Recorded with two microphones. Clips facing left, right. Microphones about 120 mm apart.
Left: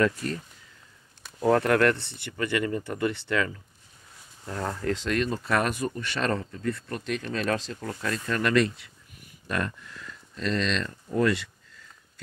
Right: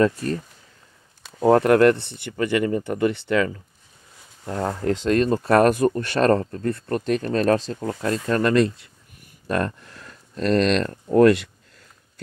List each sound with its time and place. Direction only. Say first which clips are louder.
0.0 s speech: right 5 dB; 35° right (ahead or behind)
1.4 s speech: right 6 dB; 25° right (ahead or behind)
4.5 s speech: right 6 dB; 25° right (ahead or behind); by 11.5 s 60° right (ahead or behind)